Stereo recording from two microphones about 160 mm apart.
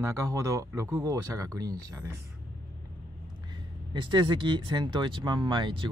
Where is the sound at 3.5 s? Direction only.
30° right (ahead or behind).